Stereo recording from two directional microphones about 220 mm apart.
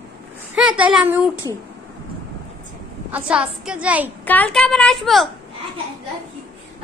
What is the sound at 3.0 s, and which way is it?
A woman's voice, 5° right (ahead or behind).